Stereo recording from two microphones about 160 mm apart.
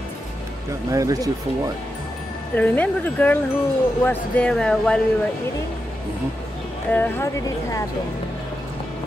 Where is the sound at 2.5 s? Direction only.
10° left (ahead or behind).